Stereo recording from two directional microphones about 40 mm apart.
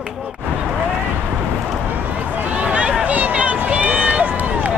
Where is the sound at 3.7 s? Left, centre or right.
Right.